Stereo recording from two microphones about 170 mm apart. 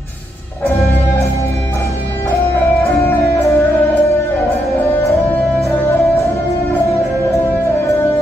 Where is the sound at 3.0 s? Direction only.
15° left (ahead or behind).